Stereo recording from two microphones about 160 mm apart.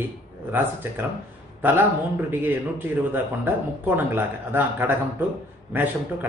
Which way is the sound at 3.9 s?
10° right (ahead or behind).